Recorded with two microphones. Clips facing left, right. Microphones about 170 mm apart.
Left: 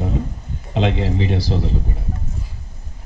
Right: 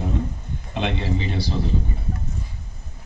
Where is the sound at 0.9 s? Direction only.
90° left.